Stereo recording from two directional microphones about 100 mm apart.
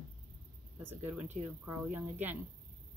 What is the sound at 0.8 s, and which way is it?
Speech, 20° right (ahead or behind).